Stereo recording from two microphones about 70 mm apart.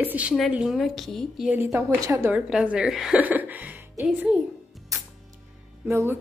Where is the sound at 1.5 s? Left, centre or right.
Right.